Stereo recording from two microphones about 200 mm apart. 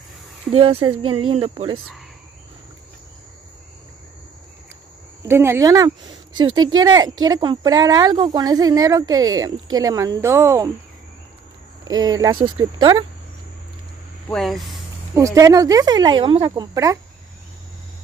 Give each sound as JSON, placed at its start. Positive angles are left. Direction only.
{"t": 0.5, "sound": "speech", "side_deg": -30}
{"t": 5.2, "sound": "speech", "side_deg": -10}
{"t": 12.0, "sound": "speech", "side_deg": -20}
{"t": 14.3, "sound": "speech", "side_deg": 0}
{"t": 15.1, "sound": "speech", "side_deg": -15}